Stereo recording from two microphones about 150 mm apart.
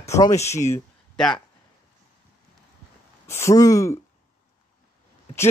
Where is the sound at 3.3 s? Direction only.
20° left (ahead or behind).